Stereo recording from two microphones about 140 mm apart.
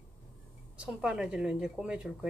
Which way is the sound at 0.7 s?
5° right (ahead or behind).